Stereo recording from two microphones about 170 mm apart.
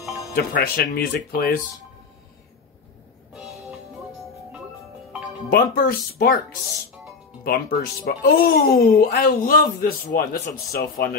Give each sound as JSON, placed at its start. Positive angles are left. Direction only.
{"t": 0.3, "sound": "speech", "side_deg": 65}
{"t": 3.3, "sound": "music", "side_deg": 0}
{"t": 5.5, "sound": "speech", "side_deg": 60}
{"t": 7.4, "sound": "speech", "side_deg": 60}